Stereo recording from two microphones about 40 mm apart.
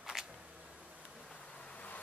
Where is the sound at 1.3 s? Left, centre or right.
Left.